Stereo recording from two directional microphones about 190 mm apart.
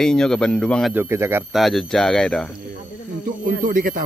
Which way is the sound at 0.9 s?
15° right (ahead or behind).